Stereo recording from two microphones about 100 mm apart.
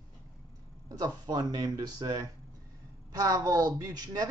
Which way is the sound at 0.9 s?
40° right (ahead or behind).